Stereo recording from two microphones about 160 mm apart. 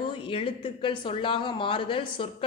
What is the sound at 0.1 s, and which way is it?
A woman's voice, 35° left (ahead or behind).